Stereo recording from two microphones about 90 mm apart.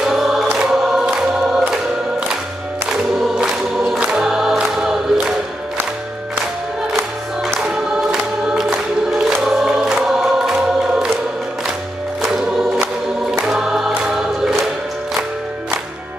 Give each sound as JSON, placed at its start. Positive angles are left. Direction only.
{"t": 0.0, "sound": "choir", "side_deg": -5}
{"t": 2.9, "sound": "choir", "side_deg": -5}
{"t": 7.6, "sound": "choir", "side_deg": -5}
{"t": 12.2, "sound": "music", "side_deg": -5}
{"t": 13.5, "sound": "choir", "side_deg": -5}